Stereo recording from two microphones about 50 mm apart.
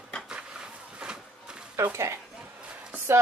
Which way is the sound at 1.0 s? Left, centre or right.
Centre.